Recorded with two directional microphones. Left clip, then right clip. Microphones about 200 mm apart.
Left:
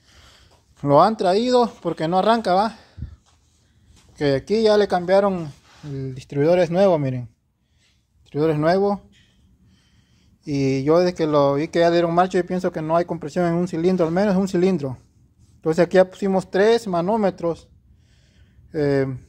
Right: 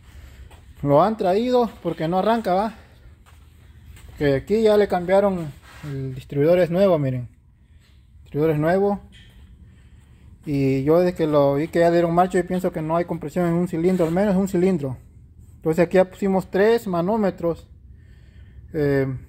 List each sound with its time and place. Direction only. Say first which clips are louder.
0.2 s speech: right 1 dB; 10° left (ahead or behind)
4.2 s speech: even; 5° left (ahead or behind)
8.3 s speech: left 1 dB; 5° left (ahead or behind)
10.4 s speech: even; 5° left (ahead or behind)
18.7 s speech: left 1 dB; 5° left (ahead or behind)